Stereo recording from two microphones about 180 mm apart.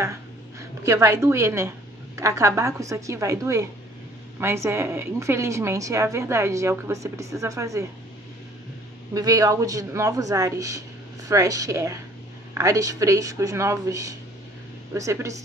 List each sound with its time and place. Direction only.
0.0 s a sound: 15° right (ahead or behind)
2.1 s a woman's voice: 15° right (ahead or behind)
9.1 s a woman's voice: 20° right (ahead or behind)